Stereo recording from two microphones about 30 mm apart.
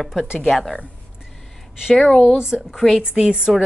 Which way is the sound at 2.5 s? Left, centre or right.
Left.